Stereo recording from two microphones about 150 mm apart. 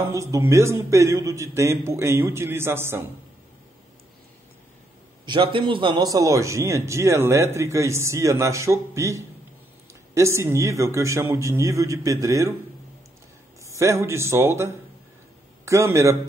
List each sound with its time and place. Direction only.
0.1 s a man's voice: 20° right (ahead or behind)
5.2 s a man's voice: 35° right (ahead or behind)
13.7 s a man's voice: 20° right (ahead or behind)